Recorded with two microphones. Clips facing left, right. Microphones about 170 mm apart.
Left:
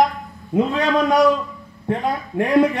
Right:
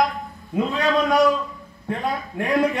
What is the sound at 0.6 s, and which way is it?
Speech, 20° left (ahead or behind).